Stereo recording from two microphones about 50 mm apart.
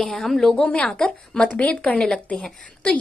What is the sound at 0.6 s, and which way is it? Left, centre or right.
A woman's voice, left.